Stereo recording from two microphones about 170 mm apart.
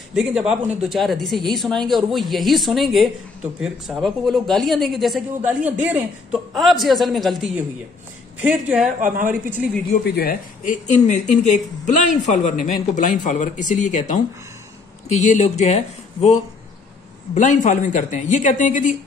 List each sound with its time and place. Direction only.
0.1 s a woman's voice: 5° right (ahead or behind)
9.0 s a woman's voice: 50° right (ahead or behind)
10.0 s speech: 65° left (ahead or behind); by 18.9 s 50° left (ahead or behind)